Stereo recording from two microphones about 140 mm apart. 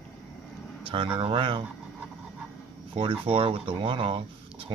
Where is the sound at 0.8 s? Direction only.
40° right (ahead or behind).